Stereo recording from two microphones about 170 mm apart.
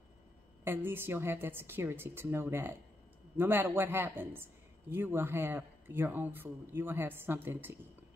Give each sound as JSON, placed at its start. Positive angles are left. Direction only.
{"t": 0.7, "sound": "a man's voice", "side_deg": -15}